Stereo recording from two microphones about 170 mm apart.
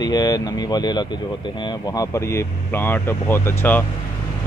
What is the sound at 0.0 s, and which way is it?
Speech, 25° left (ahead or behind).